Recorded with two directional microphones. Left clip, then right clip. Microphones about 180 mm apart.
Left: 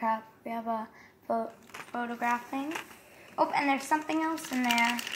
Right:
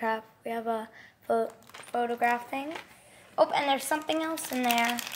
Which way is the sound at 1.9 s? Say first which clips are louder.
Right 4 dB; 45° right (ahead or behind).